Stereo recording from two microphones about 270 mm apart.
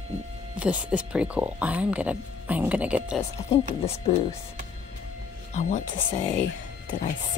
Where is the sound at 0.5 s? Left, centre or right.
Centre.